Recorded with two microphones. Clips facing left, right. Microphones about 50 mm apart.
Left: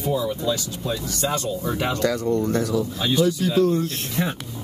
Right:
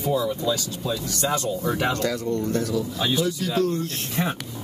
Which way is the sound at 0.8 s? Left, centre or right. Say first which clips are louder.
Left 1 dB; centre.